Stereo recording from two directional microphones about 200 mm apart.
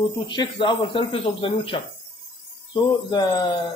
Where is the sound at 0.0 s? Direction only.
25° left (ahead or behind).